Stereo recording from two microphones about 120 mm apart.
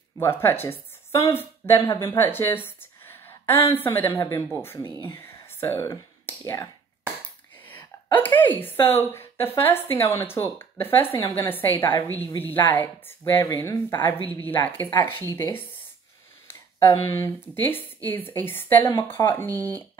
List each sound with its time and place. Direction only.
0.2 s a woman's voice: 20° left (ahead or behind)
2.1 s a sound: 20° left (ahead or behind)
3.7 s a woman's voice: 15° left (ahead or behind)
7.6 s a sound: 15° left (ahead or behind)
8.6 s a woman's voice: 20° left (ahead or behind)
16.4 s speech: 20° left (ahead or behind)